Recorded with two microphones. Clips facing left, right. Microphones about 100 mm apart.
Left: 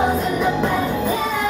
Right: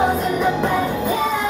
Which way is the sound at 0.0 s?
20° right (ahead or behind).